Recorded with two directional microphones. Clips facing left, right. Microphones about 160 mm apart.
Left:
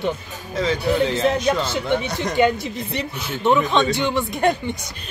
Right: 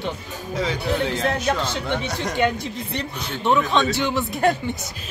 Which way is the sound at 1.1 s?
5° left (ahead or behind).